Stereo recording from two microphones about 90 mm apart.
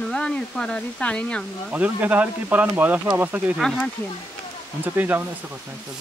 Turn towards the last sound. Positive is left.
turn(degrees=-20)  # may be behind; listen again after turning